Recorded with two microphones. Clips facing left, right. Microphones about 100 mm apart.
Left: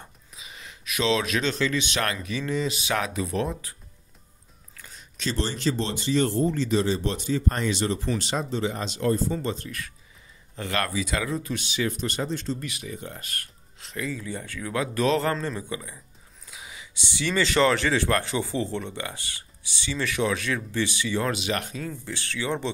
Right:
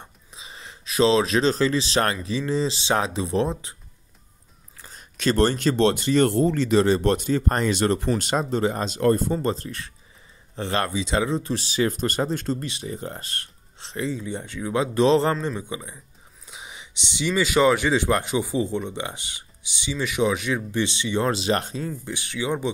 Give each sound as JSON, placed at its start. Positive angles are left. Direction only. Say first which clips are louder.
{"t": 0.0, "sound": "gasp", "louder": "right 2 dB", "side_deg": -30}
{"t": 2.2, "sound": "speech", "louder": "right 3 dB", "side_deg": -30}
{"t": 4.9, "sound": "speech", "louder": "right 8 dB", "side_deg": -55}
{"t": 12.6, "sound": "speech", "louder": "right 4 dB", "side_deg": -30}